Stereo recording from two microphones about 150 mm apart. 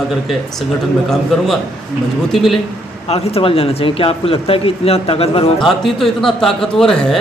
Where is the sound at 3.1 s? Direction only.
40° left (ahead or behind).